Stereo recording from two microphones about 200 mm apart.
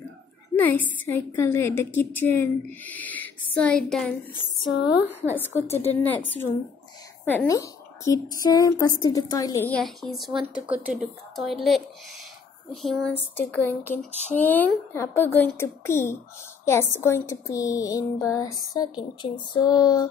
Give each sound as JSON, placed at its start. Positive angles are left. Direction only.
{"t": 0.6, "sound": "a woman's voice", "side_deg": 10}
{"t": 4.7, "sound": "a woman's voice", "side_deg": 55}
{"t": 5.0, "sound": "a woman's voice", "side_deg": -10}
{"t": 5.4, "sound": "a woman's voice", "side_deg": 10}
{"t": 9.7, "sound": "a woman's voice", "side_deg": 5}
{"t": 12.8, "sound": "a woman's voice", "side_deg": 0}